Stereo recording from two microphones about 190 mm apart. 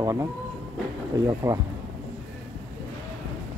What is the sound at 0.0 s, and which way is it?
Speech, 15° right (ahead or behind).